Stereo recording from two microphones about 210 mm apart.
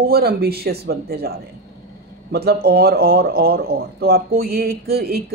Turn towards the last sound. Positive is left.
turn(degrees=-45)  # may be behind; listen again after turning